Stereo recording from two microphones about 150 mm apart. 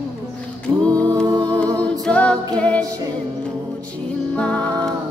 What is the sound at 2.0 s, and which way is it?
Music, 5° left (ahead or behind).